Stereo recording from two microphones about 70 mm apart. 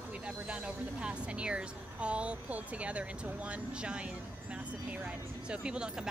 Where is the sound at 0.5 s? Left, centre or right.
Centre.